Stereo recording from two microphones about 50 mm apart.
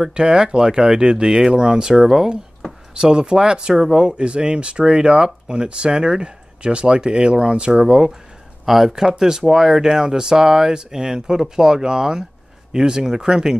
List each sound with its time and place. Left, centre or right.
0.0 s speech: centre
8.6 s speech: centre